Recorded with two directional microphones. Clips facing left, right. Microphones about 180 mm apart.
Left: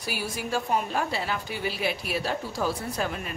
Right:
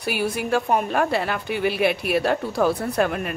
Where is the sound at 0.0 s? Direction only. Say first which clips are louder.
Right 8 dB; 60° right (ahead or behind).